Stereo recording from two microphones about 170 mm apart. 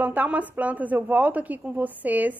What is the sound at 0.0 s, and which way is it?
Speech, 10° right (ahead or behind).